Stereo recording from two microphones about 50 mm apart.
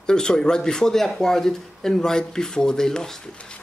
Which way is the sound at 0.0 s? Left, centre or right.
Centre.